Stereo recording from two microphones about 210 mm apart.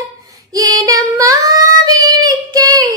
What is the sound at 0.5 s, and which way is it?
Female singing, 15° right (ahead or behind).